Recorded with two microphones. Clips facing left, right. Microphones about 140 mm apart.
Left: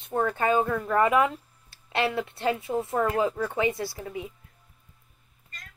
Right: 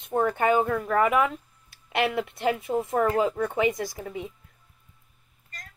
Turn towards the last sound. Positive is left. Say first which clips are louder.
# right 2 dB
turn(degrees=-15)  # may be behind; listen again after turning